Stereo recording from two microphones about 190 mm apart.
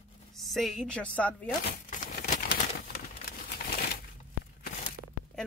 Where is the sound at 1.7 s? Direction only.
45° left (ahead or behind).